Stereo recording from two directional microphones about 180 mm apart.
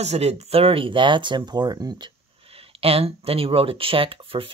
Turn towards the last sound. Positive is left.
turn(degrees=-30)  # may be behind; listen again after turning